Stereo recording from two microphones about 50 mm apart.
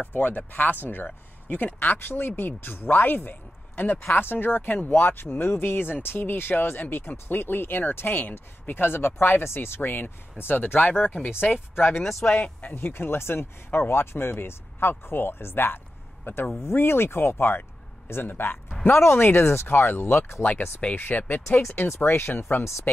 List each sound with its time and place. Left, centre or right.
0.0 s speech: left
12.0 s speech: centre
12.4 s speech: left
12.7 s speech: left
20.1 s speech: left
20.9 s speech: left
21.5 s speech: left